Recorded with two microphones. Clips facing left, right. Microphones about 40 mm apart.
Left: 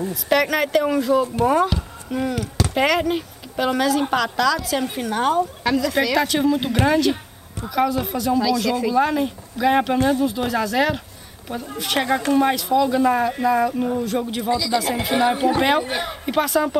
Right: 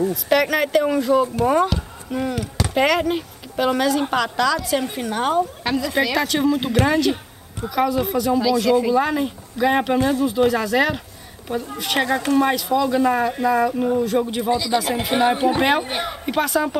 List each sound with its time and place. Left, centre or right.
0.1 s a woman's voice: centre
5.6 s a woman's voice: centre
6.1 s a woman's voice: centre
14.5 s speech: right
15.1 s a woman's voice: centre